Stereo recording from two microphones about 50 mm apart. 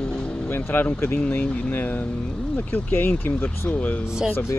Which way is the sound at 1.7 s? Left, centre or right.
Left.